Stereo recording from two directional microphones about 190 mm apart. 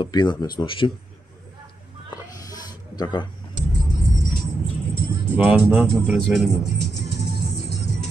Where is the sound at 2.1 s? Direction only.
20° left (ahead or behind).